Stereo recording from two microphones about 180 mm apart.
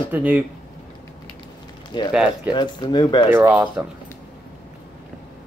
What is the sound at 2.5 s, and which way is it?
Speech, 25° left (ahead or behind).